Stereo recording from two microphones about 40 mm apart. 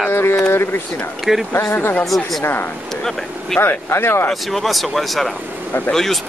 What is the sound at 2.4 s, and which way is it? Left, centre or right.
Speech, left.